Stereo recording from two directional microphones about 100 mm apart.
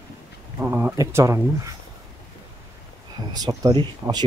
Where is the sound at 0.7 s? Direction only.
20° right (ahead or behind).